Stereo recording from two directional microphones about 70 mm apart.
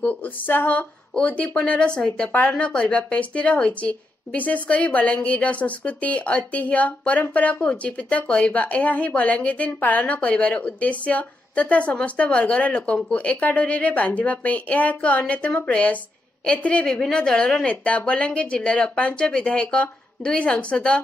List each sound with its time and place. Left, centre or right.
0.0 s a woman's voice: left